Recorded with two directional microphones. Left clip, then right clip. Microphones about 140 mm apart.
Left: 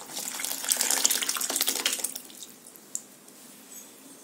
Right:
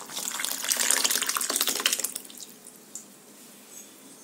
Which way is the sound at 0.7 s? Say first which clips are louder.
Right 1 dB; centre (ahead or behind).